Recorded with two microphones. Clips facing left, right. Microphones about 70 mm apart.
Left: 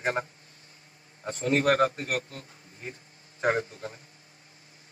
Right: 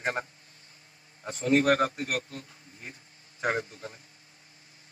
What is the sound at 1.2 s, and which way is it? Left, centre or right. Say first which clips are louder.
A man's voice: right 1 dB; left.